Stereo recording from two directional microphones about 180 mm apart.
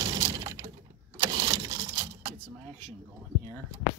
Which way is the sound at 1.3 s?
20° right (ahead or behind).